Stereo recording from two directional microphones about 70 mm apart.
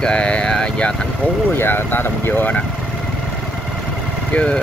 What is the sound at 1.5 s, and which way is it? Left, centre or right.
Speech, left.